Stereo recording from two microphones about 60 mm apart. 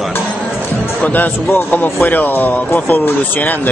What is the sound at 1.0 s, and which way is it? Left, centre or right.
Speech, left.